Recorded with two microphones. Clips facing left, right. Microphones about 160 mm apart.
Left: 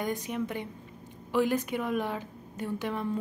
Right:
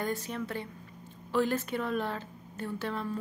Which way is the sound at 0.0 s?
15° left (ahead or behind).